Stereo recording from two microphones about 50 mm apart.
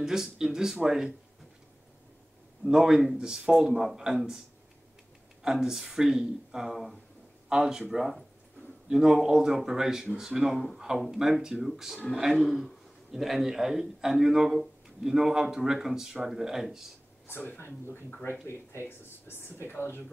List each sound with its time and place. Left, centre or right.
0.0 s a man's voice: centre
2.7 s a man's voice: centre
5.4 s a man's voice: centre
7.9 s a man's voice: centre
17.6 s speech: left
19.2 s speech: left
19.7 s speech: left